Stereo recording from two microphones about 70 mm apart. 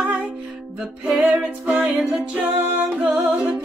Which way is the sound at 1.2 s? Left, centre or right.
Right.